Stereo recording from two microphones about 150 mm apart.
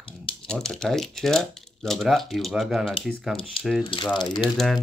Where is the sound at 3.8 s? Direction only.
35° left (ahead or behind).